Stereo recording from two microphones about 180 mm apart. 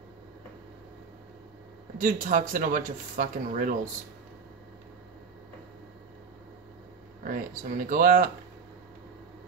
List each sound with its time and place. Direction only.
2.0 s speech: 45° right (ahead or behind)
7.2 s speech: 50° right (ahead or behind)